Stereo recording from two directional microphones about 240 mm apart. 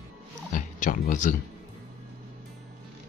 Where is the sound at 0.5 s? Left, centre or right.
Left.